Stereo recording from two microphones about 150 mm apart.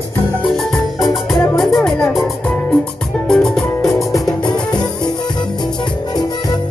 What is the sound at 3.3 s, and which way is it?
Music, 5° left (ahead or behind).